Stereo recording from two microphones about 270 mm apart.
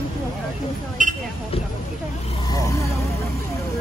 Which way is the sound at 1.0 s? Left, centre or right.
Right.